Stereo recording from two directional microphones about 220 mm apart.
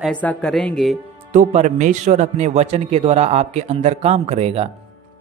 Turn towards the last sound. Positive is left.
turn(degrees=-30)  # may be behind; listen again after turning